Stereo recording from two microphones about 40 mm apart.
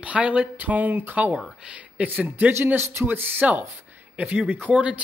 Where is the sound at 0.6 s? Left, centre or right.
Right.